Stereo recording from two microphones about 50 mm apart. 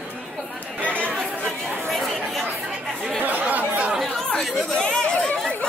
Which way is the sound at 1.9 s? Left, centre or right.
Centre.